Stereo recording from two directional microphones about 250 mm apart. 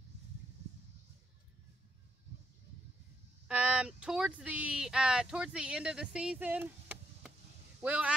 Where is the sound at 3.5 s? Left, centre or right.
Centre.